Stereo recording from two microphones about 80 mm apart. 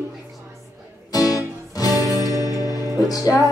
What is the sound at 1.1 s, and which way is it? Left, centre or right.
Music, left.